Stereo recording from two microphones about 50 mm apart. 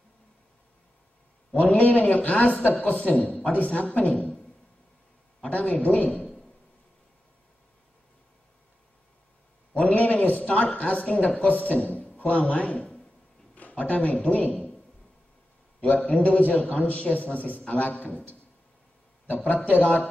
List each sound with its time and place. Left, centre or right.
1.5 s speech: left
5.4 s a man's voice: left
9.8 s a man's voice: left
15.8 s a man's voice: left